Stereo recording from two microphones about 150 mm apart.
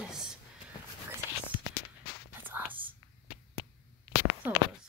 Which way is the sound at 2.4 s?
10° right (ahead or behind).